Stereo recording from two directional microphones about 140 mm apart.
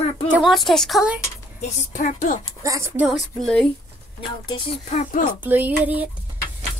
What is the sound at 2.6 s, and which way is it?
Speech, 20° right (ahead or behind).